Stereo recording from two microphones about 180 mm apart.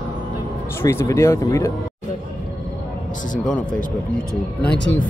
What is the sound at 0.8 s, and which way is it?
Speech, 15° left (ahead or behind).